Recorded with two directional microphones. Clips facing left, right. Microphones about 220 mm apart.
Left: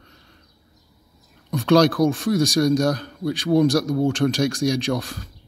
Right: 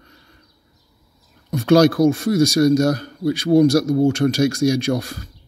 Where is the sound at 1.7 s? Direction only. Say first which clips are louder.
Right 3 dB; centre (ahead or behind).